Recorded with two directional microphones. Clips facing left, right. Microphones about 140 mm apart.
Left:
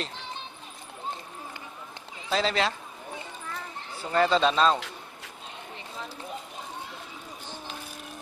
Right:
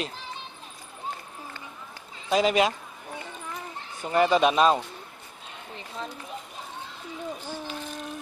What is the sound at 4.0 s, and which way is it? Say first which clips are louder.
Speech: right 2 dB; 15° right (ahead or behind).